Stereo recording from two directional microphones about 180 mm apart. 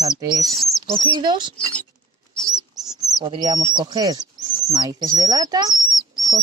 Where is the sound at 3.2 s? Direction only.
25° right (ahead or behind).